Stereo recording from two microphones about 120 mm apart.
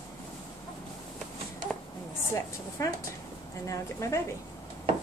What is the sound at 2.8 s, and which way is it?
A woman's voice, 30° left (ahead or behind).